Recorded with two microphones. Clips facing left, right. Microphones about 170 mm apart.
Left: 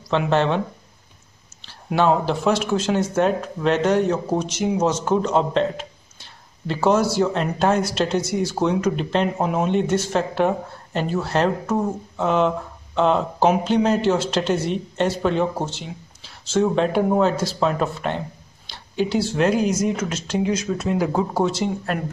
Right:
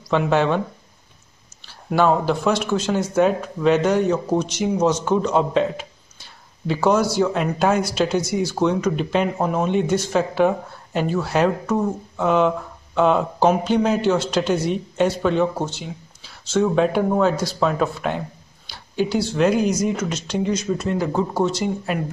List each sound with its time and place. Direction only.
0.1 s speech: 5° right (ahead or behind)
1.7 s speech: centre (ahead or behind)
11.6 s speech: 5° left (ahead or behind)
15.7 s a sound: centre (ahead or behind)
16.7 s speech: 5° right (ahead or behind)
21.9 s speech: 5° right (ahead or behind)